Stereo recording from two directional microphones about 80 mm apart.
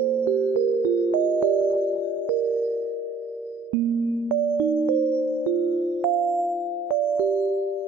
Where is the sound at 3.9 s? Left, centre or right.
Right.